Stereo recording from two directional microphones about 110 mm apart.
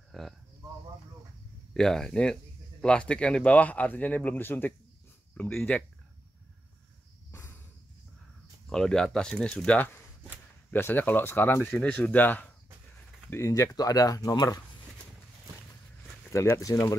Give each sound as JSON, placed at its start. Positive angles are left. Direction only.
{"t": 0.1, "sound": "a sound", "side_deg": 0}
{"t": 1.7, "sound": "speech", "side_deg": 5}
{"t": 7.2, "sound": "a sound", "side_deg": 20}
{"t": 8.6, "sound": "speech", "side_deg": 5}
{"t": 13.3, "sound": "speech", "side_deg": 30}
{"t": 16.3, "sound": "speech", "side_deg": 25}